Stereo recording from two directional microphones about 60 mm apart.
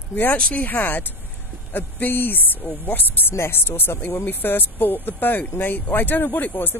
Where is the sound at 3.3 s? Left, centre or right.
Left.